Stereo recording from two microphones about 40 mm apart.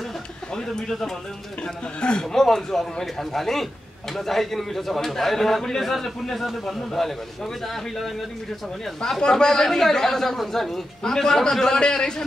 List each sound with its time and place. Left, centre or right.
0.8 s a man's voice: centre
2.0 s speech: left
2.3 s a man's voice: centre
9.2 s a man's voice: centre